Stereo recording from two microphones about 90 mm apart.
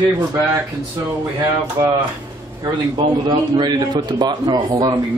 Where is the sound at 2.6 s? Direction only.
55° right (ahead or behind).